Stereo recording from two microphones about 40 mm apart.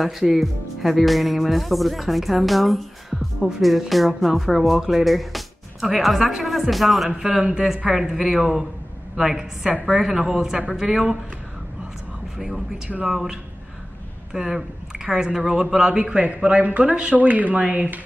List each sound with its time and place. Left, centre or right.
0.3 s speech: centre
7.1 s a man's voice: centre
12.4 s a man's voice: centre; by 17.8 s right